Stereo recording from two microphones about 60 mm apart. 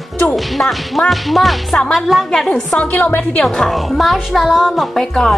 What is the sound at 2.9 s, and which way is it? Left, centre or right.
Speech, left.